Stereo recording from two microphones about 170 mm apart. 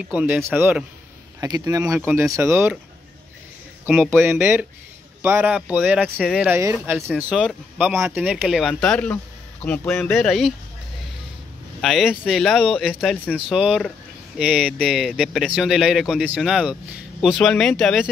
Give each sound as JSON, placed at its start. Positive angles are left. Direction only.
{"t": 0.1, "sound": "speech", "side_deg": -10}
{"t": 1.4, "sound": "speech", "side_deg": -20}
{"t": 3.8, "sound": "speech", "side_deg": -10}
{"t": 7.3, "sound": "speech", "side_deg": 5}
{"t": 10.1, "sound": "speech", "side_deg": 0}
{"t": 11.8, "sound": "speech", "side_deg": 0}